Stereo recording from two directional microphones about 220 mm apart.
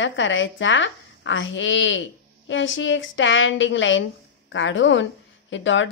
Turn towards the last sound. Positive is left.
turn(degrees=60)  # may be behind; listen again after turning